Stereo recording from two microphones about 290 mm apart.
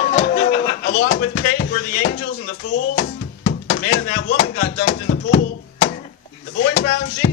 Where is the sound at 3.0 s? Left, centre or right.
Left.